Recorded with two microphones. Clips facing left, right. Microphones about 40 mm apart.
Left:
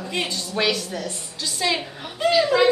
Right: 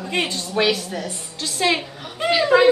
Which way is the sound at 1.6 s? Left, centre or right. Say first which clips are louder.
Right 4 dB; right.